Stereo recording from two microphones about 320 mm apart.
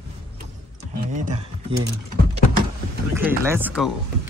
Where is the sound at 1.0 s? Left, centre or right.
Right.